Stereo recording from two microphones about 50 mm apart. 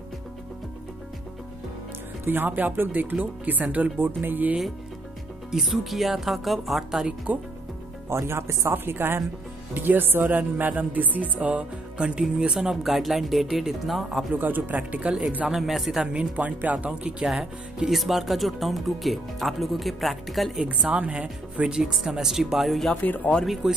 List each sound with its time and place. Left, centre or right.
2.2 s speech: right
4.0 s speech: right
5.5 s speech: centre
7.3 s speech: right
8.1 s speech: right
8.7 s a woman's voice: right; by 12.7 s centre
12.8 s speech: centre
14.3 s speech: right
15.4 s speech: centre
16.0 s speech: right
17.3 s speech: centre
20.6 s speech: right; by 22.8 s centre
22.9 s speech: left
23.4 s speech: centre